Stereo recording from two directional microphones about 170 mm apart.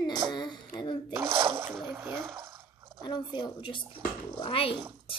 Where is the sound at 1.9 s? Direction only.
15° right (ahead or behind).